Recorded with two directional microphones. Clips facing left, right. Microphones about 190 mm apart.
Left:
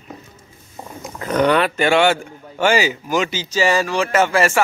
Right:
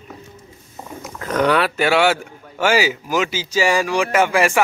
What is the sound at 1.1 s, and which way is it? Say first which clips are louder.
Speech: left 1 dB; centre (ahead or behind).